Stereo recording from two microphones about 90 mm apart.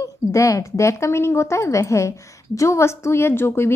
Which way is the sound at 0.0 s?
35° left (ahead or behind).